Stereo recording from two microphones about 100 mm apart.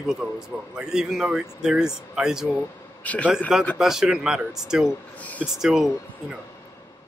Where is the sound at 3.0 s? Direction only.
15° left (ahead or behind).